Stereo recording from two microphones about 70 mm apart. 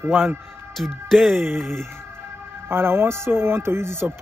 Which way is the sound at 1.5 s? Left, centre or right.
Right.